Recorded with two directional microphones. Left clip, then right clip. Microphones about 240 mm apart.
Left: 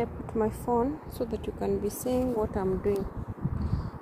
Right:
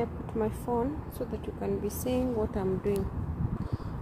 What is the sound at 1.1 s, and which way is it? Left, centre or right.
Speech, left.